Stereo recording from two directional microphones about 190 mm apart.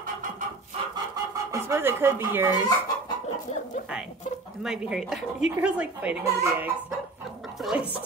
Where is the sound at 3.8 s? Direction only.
5° right (ahead or behind).